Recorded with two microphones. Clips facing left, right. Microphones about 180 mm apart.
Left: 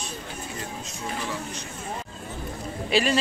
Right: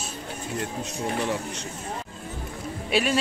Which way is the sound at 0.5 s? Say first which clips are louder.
Right 5 dB; 65° right (ahead or behind).